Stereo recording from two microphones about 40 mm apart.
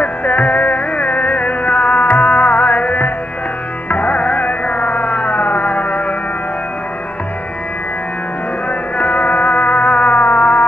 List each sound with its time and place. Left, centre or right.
0.0 s music: left
8.6 s music: left